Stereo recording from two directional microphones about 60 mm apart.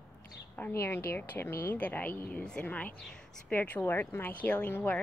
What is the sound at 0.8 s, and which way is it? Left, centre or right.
A woman's voice, left.